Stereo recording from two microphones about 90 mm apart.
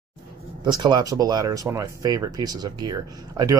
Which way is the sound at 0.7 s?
55° right (ahead or behind).